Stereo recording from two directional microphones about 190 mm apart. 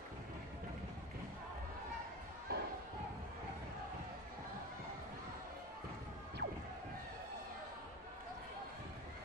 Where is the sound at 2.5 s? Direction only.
60° right (ahead or behind).